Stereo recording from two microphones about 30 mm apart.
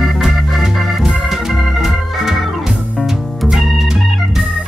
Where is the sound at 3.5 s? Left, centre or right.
Centre.